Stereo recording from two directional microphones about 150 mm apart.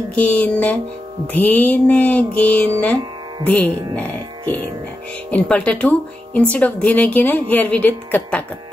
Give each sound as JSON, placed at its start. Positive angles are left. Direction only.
{"t": 0.1, "sound": "speech", "side_deg": 10}
{"t": 5.3, "sound": "speech", "side_deg": 10}